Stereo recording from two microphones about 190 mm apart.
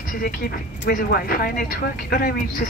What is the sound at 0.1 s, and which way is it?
Speech, 50° left (ahead or behind).